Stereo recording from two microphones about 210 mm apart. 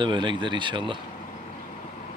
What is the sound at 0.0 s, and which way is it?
Speech, 20° right (ahead or behind).